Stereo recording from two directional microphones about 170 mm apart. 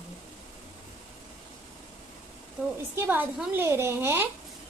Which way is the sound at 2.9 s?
10° right (ahead or behind).